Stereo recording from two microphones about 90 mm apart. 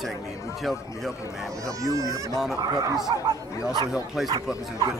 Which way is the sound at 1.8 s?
40° right (ahead or behind).